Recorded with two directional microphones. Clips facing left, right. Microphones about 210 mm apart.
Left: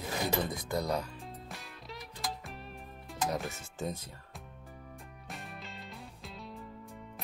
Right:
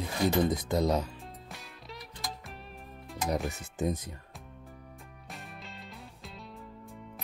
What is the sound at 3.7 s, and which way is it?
Speech, 15° right (ahead or behind).